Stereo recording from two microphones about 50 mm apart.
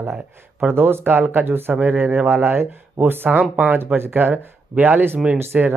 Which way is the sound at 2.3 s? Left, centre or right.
Right.